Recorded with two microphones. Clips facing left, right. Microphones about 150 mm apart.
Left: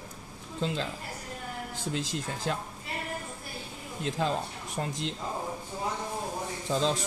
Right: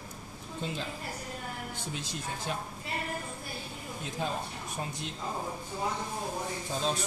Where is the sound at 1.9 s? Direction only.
90° left.